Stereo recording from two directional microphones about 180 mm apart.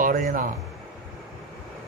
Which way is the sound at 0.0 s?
50° right (ahead or behind).